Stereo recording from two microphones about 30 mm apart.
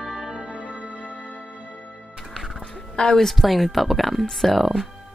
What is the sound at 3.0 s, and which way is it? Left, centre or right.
Speech, centre.